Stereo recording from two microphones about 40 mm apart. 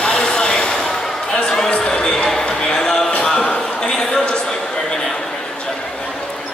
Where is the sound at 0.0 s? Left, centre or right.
Left.